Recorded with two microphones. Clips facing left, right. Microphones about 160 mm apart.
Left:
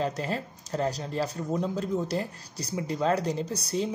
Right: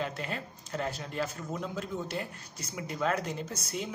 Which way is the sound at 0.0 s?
35° left (ahead or behind).